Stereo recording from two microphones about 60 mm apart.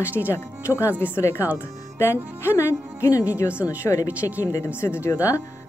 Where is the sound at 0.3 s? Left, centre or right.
Left.